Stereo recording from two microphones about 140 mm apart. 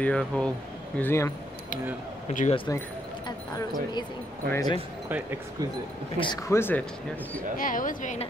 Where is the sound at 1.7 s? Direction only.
70° left (ahead or behind).